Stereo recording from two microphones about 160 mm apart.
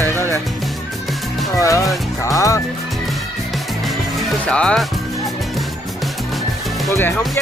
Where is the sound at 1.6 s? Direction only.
20° left (ahead or behind).